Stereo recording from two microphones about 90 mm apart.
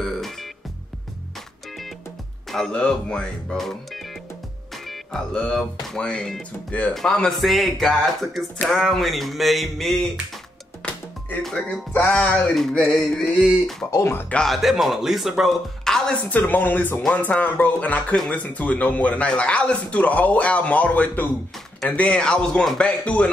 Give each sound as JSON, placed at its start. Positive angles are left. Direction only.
{"t": 0.0, "sound": "music", "side_deg": 0}
{"t": 2.5, "sound": "speech", "side_deg": 5}
{"t": 10.8, "sound": "music", "side_deg": 15}
{"t": 11.4, "sound": "speech", "side_deg": 5}
{"t": 12.5, "sound": "speech", "side_deg": 5}
{"t": 13.3, "sound": "speech", "side_deg": -15}
{"t": 13.8, "sound": "speech", "side_deg": 40}
{"t": 14.4, "sound": "speech", "side_deg": 0}
{"t": 16.3, "sound": "speech", "side_deg": 20}